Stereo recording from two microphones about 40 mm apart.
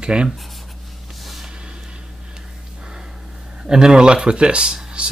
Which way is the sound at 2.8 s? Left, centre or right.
Centre.